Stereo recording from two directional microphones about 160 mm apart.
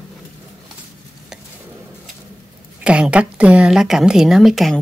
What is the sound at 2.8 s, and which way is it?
A woman's voice, 5° right (ahead or behind).